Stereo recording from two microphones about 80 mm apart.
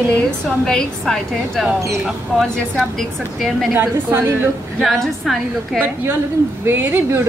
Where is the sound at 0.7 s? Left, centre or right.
Centre.